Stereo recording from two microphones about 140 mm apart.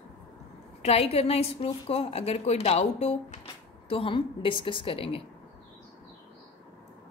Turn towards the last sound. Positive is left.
turn(degrees=40)  # may be behind; listen again after turning